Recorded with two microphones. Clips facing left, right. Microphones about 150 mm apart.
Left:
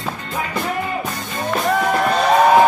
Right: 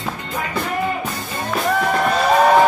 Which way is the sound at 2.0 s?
Centre (ahead or behind).